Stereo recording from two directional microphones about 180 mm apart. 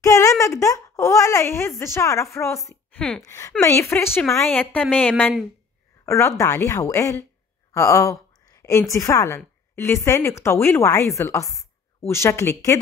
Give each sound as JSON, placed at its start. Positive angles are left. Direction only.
{"t": 0.0, "sound": "a sound", "side_deg": 15}
{"t": 1.8, "sound": "speech", "side_deg": 15}
{"t": 3.3, "sound": "speech", "side_deg": 15}
{"t": 6.0, "sound": "speech", "side_deg": 15}